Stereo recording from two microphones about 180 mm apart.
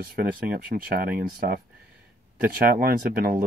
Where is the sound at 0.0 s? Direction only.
55° right (ahead or behind).